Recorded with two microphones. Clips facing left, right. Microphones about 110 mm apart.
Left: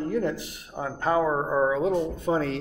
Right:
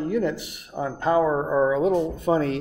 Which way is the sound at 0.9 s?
10° right (ahead or behind).